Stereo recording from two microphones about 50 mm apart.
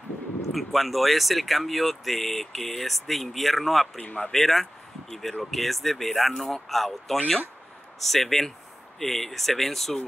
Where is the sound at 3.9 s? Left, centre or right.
Left.